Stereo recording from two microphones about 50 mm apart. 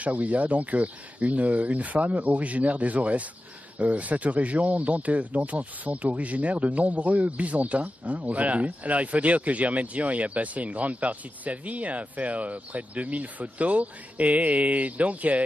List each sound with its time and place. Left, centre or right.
0.0 s speech: right